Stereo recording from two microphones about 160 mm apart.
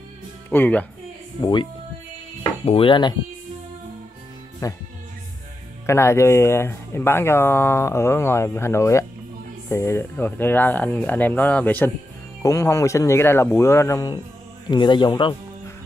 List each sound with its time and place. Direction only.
0.5 s speech: 10° left (ahead or behind)
1.4 s speech: 30° left (ahead or behind)
4.6 s speech: 20° left (ahead or behind)
5.9 s speech: 15° left (ahead or behind)
14.7 s speech: 25° left (ahead or behind)